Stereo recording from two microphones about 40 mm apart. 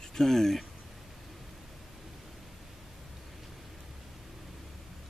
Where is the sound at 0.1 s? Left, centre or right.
Centre.